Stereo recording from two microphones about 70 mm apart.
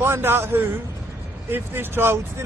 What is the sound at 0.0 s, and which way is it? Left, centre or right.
A man's voice, right.